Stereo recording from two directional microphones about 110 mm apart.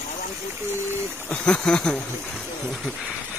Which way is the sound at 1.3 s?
10° left (ahead or behind).